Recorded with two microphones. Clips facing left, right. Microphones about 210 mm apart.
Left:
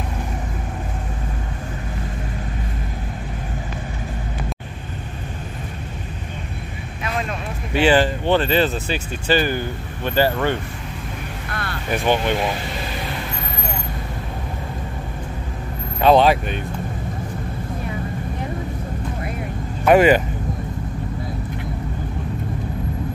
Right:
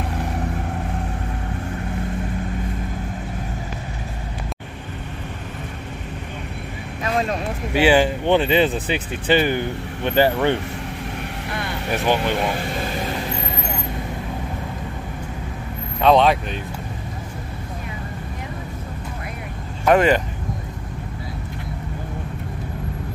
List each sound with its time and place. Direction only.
7.7 s speech: 10° right (ahead or behind)
11.9 s speech: centre (ahead or behind)
16.0 s speech: 5° left (ahead or behind)
19.8 s speech: 10° left (ahead or behind)